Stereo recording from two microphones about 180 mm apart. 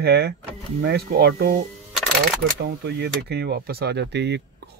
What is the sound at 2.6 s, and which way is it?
Speech, 70° right (ahead or behind).